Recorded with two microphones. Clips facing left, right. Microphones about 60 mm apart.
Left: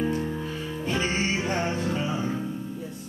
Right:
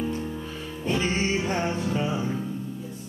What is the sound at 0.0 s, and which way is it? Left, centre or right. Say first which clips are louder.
Music: left 3 dB; left.